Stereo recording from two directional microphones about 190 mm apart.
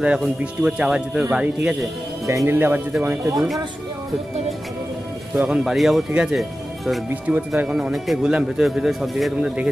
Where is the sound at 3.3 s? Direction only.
Centre (ahead or behind).